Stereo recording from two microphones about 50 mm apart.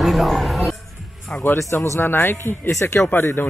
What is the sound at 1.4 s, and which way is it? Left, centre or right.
Speech, left.